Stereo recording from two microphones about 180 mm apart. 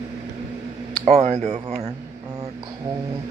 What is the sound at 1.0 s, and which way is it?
Speech, 35° right (ahead or behind).